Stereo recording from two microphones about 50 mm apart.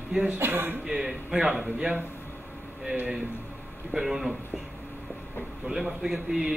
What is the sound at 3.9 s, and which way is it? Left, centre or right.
Speech, centre.